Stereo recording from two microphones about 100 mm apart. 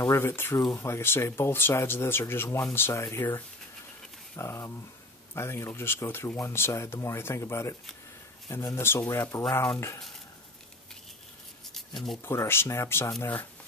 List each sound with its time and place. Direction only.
0.1 s speech: 25° left (ahead or behind)
12.2 s speech: 25° left (ahead or behind)